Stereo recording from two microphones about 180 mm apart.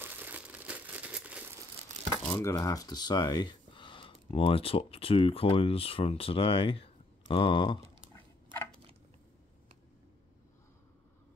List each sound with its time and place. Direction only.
0.0 s crumpling: 10° right (ahead or behind)
2.3 s speech: 20° left (ahead or behind)